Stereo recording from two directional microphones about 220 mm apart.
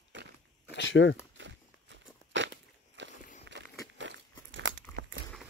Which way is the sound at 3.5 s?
55° right (ahead or behind).